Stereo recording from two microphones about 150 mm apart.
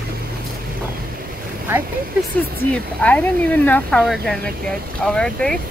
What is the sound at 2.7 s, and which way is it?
Speech, 10° left (ahead or behind).